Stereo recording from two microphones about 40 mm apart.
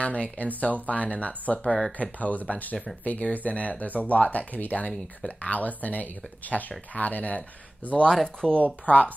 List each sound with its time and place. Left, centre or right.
0.0 s speech: left
2.0 s speech: left
8.1 s speech: centre
8.8 s speech: left